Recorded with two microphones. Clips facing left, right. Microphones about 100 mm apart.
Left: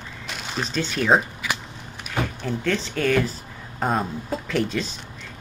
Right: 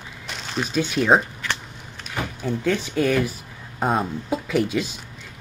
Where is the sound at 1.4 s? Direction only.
10° left (ahead or behind).